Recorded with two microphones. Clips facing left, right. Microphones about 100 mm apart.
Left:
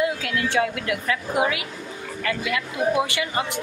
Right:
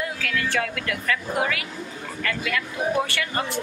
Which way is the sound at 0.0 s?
20° left (ahead or behind).